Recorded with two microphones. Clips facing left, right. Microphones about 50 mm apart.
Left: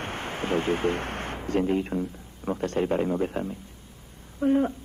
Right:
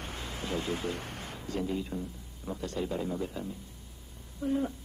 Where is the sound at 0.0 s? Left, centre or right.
Left.